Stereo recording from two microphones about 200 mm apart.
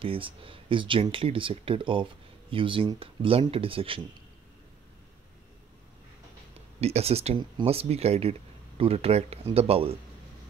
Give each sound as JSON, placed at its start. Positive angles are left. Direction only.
{"t": 0.0, "sound": "speech", "side_deg": -25}
{"t": 6.8, "sound": "speech", "side_deg": -30}